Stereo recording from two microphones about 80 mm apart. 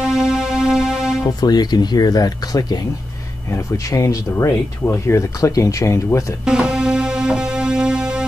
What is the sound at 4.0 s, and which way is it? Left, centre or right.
Speech, left.